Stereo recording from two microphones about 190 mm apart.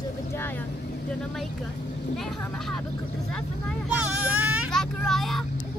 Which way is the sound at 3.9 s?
5° right (ahead or behind).